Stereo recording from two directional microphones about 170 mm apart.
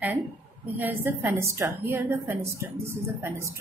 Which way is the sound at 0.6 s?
10° right (ahead or behind).